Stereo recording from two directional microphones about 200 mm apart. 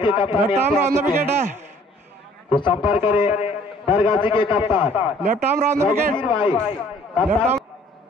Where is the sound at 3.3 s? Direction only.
40° left (ahead or behind).